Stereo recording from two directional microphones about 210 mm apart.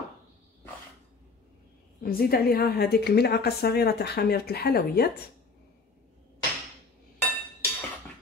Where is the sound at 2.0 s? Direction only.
45° left (ahead or behind).